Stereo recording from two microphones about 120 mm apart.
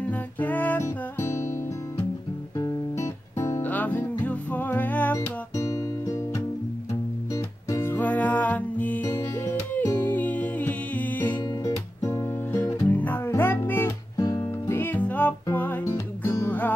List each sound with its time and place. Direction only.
0.1 s music: 15° left (ahead or behind)
2.5 s music: 30° left (ahead or behind); by 5.2 s 15° left (ahead or behind)
5.6 s music: 25° left (ahead or behind)
7.3 s music: 20° left (ahead or behind)